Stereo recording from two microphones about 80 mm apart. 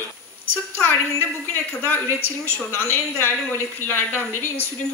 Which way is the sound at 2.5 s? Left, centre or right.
Left.